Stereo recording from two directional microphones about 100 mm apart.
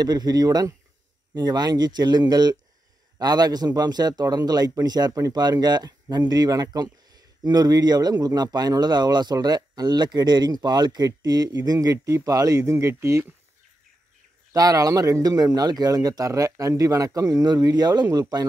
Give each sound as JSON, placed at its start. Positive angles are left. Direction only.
{"t": 0.0, "sound": "a man's voice", "side_deg": -45}
{"t": 14.5, "sound": "speech", "side_deg": -40}